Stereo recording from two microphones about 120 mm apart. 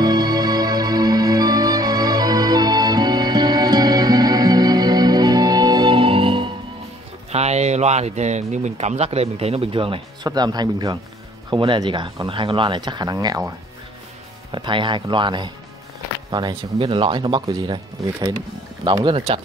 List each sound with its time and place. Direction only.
0.0 s music: 35° right (ahead or behind)
7.2 s speech: 65° right (ahead or behind); by 13.5 s 30° right (ahead or behind)
14.5 s speech: 45° right (ahead or behind)
16.8 s speech: 45° right (ahead or behind)
17.5 s speech: 30° right (ahead or behind); by 19.4 s 50° right (ahead or behind)